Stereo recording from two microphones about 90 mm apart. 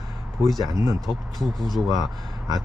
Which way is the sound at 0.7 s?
40° right (ahead or behind).